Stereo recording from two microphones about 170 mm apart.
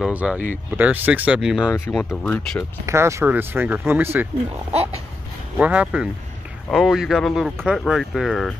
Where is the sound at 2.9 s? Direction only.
15° right (ahead or behind).